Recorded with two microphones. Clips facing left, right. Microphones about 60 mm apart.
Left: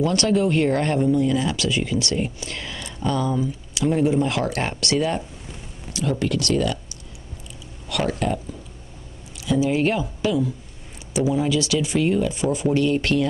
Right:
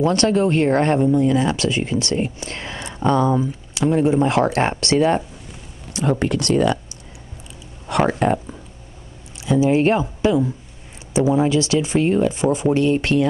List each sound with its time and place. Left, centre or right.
0.0 s speech: right
7.9 s speech: right
9.4 s speech: right